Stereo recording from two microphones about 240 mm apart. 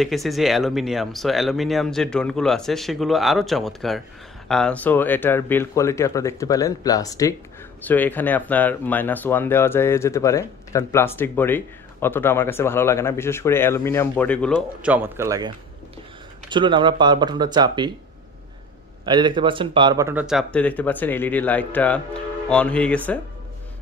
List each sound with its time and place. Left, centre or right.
0.0 s speech: centre
19.0 s speech: centre